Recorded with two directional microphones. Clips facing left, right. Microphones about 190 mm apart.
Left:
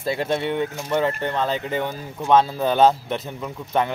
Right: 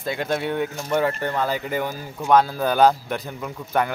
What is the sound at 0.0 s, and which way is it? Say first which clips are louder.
Speech: left 2 dB; 30° left (ahead or behind).